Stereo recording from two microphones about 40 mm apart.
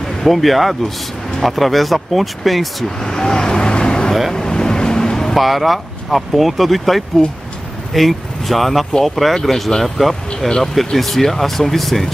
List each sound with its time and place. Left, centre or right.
0.0 s speech: centre
3.0 s vehicle: centre
5.3 s speech: centre